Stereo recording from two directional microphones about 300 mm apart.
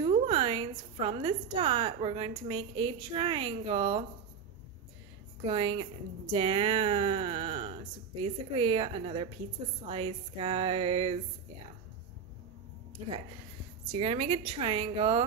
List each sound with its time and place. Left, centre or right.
0.0 s a woman's voice: centre
5.4 s speech: centre
13.9 s speech: centre